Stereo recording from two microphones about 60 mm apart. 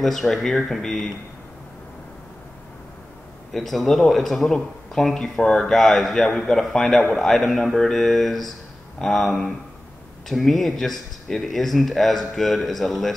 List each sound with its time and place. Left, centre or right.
0.0 s speech: centre
3.5 s a man's voice: centre